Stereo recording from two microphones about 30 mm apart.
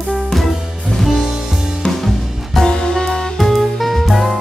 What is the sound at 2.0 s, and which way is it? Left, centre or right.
Music, centre.